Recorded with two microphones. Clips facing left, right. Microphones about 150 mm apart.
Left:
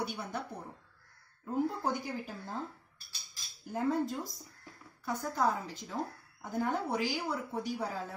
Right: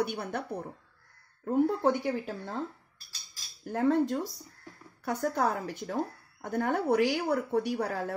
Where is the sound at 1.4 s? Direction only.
75° right (ahead or behind).